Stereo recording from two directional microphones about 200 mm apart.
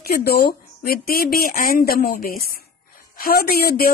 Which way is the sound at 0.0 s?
50° left (ahead or behind).